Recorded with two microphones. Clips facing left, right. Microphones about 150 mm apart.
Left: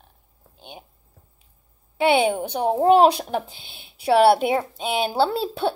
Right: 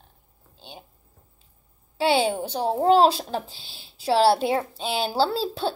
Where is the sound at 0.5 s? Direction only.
15° left (ahead or behind).